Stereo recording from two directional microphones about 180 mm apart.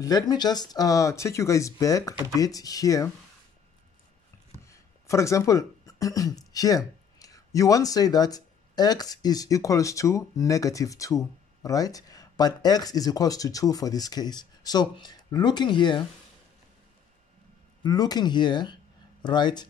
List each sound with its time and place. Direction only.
0.0 s speech: 20° left (ahead or behind)
4.6 s speech: 15° left (ahead or behind)
17.8 s speech: 20° left (ahead or behind)